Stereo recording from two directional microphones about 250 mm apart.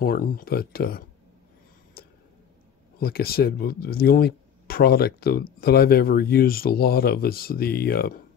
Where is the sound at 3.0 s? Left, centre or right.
Left.